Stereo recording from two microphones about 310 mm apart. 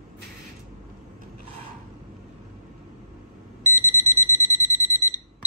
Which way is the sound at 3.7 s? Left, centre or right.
Centre.